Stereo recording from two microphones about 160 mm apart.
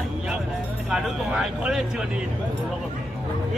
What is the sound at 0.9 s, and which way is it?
Speech, 5° right (ahead or behind).